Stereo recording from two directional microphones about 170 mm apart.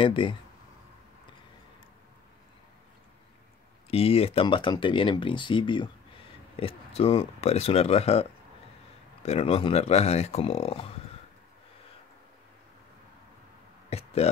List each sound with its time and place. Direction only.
0.0 s speech: 30° left (ahead or behind)
3.9 s speech: 35° left (ahead or behind)
13.8 s a sound: 40° left (ahead or behind)